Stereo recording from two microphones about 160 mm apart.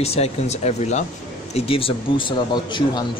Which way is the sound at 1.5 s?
35° left (ahead or behind).